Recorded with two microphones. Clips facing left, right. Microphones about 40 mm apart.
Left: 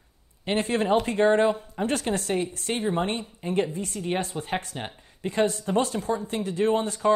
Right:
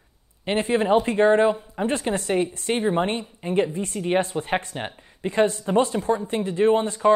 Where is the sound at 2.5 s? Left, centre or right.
Right.